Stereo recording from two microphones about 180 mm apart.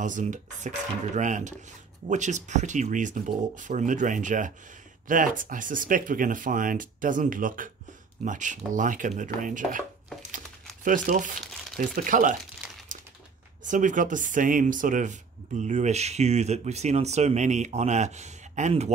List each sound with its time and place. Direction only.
0.0 s speech: 45° right (ahead or behind)
10.3 s crumpling: 50° right (ahead or behind)
11.8 s speech: 50° right (ahead or behind)
13.7 s speech: 45° right (ahead or behind)